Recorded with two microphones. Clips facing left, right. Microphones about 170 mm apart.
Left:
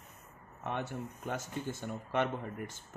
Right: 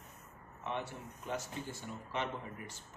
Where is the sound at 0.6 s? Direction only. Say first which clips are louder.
Left 3 dB; 50° left (ahead or behind).